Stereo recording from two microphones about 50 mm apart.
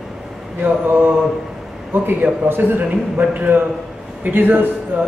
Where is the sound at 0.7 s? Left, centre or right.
Right.